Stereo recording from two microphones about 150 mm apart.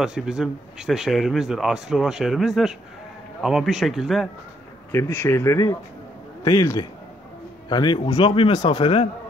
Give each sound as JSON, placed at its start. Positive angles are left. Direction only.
{"t": 0.0, "sound": "speech", "side_deg": -5}
{"t": 4.9, "sound": "speech", "side_deg": 20}